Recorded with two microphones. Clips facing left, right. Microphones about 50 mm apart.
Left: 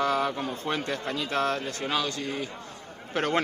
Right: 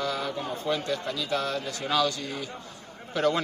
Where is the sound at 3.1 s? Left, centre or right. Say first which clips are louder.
Right 3 dB; left.